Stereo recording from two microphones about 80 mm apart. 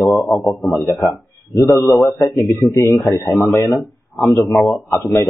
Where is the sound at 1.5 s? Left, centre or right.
Left.